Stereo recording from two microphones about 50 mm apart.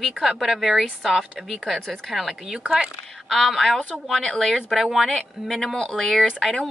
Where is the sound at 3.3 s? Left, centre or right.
Centre.